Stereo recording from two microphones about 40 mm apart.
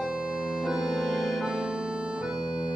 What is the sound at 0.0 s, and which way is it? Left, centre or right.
Organ, centre.